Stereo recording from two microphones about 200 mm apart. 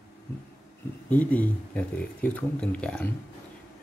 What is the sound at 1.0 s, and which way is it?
Speech, 5° left (ahead or behind).